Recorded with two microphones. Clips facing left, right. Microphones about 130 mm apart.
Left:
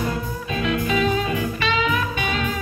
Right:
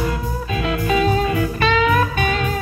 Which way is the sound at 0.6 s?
40° right (ahead or behind).